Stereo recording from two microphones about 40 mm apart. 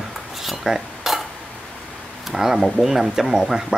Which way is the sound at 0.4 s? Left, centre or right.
Centre.